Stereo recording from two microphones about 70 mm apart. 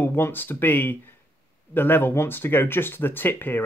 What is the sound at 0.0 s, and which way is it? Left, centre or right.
Speech, left.